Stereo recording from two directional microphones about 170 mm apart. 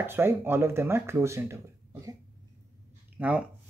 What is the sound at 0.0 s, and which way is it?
Speech, 15° right (ahead or behind).